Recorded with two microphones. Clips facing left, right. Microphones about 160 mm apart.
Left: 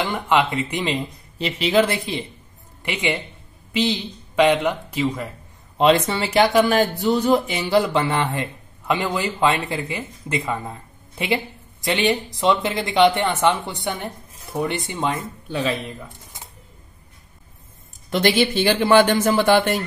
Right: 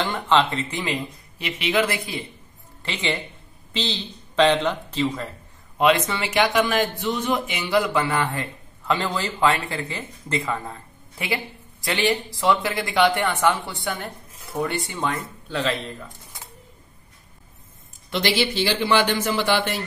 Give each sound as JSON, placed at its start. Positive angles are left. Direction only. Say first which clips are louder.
{"t": 0.0, "sound": "speech", "louder": "left 1 dB", "side_deg": 10}
{"t": 2.8, "sound": "speech", "louder": "left 3 dB", "side_deg": 15}
{"t": 5.8, "sound": "speech", "louder": "left 3 dB", "side_deg": 30}
{"t": 18.1, "sound": "speech", "louder": "left 4 dB", "side_deg": 50}